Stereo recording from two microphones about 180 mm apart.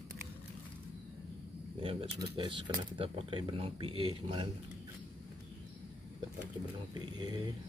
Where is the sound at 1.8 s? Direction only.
30° right (ahead or behind).